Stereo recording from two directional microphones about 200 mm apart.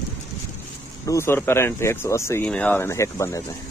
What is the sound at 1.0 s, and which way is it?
Speech, 15° left (ahead or behind).